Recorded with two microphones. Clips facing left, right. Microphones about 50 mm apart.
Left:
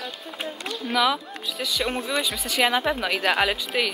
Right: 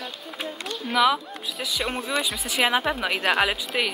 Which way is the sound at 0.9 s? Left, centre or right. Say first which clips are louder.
Right 2 dB; centre.